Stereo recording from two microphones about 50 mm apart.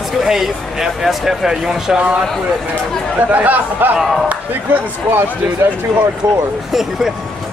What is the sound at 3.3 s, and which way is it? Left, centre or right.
Speech, right.